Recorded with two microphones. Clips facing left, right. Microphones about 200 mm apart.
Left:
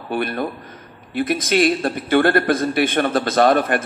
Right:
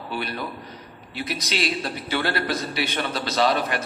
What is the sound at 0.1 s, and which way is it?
A man's voice, 50° left (ahead or behind).